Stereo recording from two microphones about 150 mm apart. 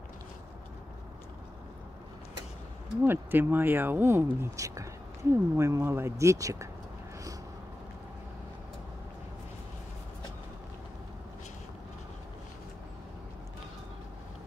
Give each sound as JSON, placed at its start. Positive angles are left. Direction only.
{"t": 3.0, "sound": "speech", "side_deg": -15}